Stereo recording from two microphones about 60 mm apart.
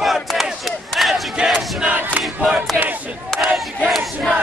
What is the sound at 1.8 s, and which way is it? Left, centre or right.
Crowd, right.